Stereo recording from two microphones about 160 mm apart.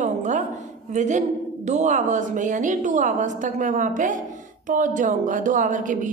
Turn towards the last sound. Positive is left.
turn(degrees=-55)  # may be behind; listen again after turning